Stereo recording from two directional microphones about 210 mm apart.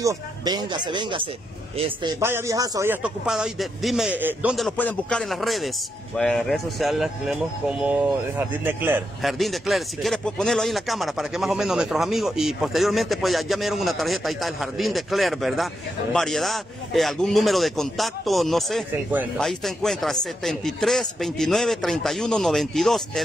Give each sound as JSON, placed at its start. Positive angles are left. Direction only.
{"t": 0.0, "sound": "speech", "side_deg": -15}